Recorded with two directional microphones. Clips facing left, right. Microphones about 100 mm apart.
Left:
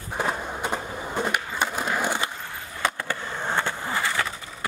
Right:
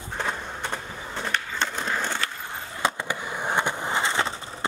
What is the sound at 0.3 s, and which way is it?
Skateboard, 10° left (ahead or behind).